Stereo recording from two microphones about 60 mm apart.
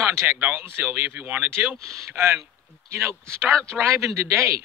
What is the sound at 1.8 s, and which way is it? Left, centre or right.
Speech, right.